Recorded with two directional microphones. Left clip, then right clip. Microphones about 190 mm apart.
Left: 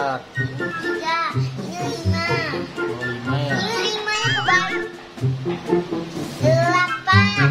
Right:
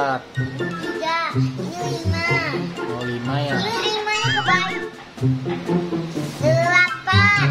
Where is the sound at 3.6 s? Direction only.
Centre (ahead or behind).